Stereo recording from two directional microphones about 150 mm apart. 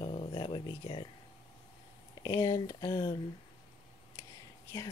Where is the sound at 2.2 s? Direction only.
25° left (ahead or behind).